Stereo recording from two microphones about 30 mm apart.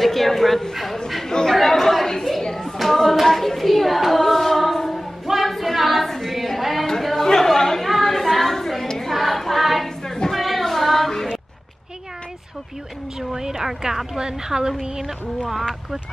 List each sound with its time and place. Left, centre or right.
0.0 s speech: centre
1.0 s chatter: centre
2.8 s hands: centre
5.2 s a sound: centre
7.0 s chatter: centre
8.0 s a sound: centre
10.0 s a sound: left
10.3 s child singing: centre
13.2 s a woman's voice: centre
14.7 s a woman's voice: centre